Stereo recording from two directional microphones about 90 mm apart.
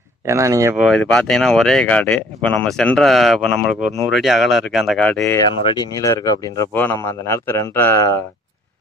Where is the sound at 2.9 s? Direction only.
5° left (ahead or behind).